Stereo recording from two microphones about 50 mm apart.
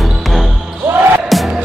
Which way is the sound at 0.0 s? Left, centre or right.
Centre.